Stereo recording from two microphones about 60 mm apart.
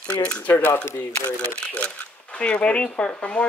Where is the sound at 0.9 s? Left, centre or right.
Left.